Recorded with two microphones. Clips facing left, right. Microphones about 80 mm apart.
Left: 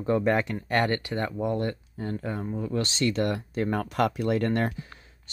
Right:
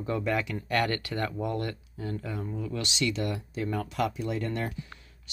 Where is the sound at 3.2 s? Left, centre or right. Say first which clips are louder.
Left 5 dB; left.